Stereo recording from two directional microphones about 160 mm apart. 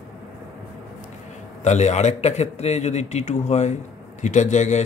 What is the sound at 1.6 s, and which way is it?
A man's voice, 45° left (ahead or behind).